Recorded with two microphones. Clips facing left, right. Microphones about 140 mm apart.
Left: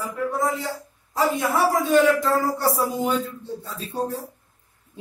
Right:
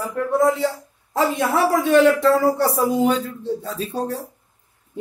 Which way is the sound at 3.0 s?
85° right.